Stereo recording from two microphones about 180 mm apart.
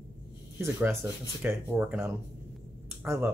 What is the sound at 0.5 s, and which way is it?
Speech, 10° right (ahead or behind).